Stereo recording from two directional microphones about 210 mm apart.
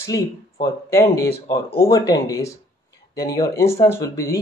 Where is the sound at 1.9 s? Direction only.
15° left (ahead or behind).